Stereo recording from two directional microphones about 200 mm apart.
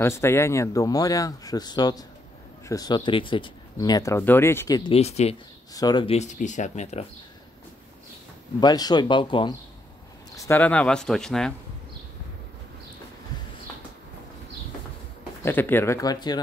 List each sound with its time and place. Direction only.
0.0 s speech: 15° left (ahead or behind); by 5.3 s 30° left (ahead or behind)
5.7 s speech: 20° left (ahead or behind); by 7.1 s 35° left (ahead or behind)
8.5 s speech: 20° left (ahead or behind)
10.3 s speech: 15° left (ahead or behind)
15.4 s speech: 10° left (ahead or behind)